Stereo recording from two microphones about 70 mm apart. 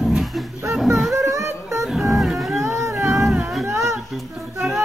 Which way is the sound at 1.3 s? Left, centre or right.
Right.